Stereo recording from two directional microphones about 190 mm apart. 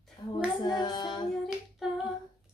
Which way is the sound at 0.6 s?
20° left (ahead or behind).